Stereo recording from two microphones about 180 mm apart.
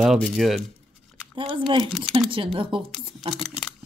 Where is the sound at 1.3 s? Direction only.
25° right (ahead or behind).